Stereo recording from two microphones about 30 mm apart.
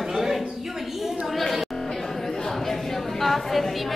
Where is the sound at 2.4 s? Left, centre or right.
Centre.